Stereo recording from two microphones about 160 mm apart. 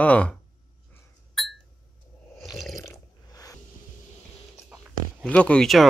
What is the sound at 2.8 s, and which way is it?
Water, 20° left (ahead or behind).